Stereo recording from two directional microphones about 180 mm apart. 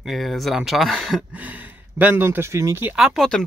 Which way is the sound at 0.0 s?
Centre (ahead or behind).